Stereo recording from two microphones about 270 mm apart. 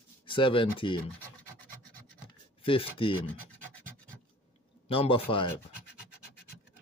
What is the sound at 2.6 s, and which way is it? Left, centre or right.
Speech, centre.